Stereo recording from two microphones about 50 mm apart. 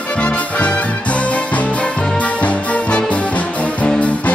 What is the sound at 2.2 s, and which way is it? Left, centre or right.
Music, left.